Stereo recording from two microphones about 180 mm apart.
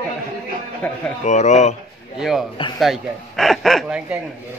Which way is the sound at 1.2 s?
40° left (ahead or behind).